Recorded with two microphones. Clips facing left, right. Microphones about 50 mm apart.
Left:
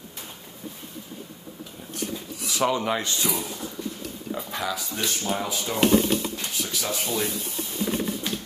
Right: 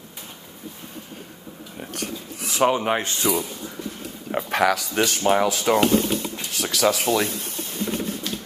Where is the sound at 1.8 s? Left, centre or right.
Right.